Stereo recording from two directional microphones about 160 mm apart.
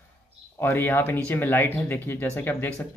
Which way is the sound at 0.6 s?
15° left (ahead or behind).